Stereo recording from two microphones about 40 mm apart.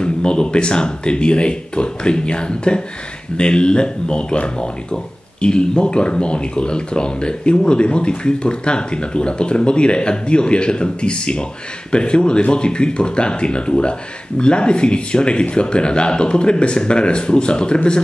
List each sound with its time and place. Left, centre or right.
0.0 s speech: left